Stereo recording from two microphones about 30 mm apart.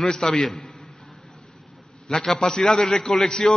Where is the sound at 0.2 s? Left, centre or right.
Centre.